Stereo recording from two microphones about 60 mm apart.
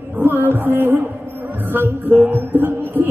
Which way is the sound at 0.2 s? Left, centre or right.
Right.